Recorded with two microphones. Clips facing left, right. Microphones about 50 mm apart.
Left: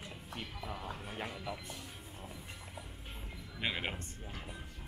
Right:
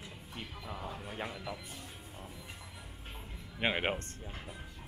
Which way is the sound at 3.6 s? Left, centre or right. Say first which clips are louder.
Right 5 dB; right.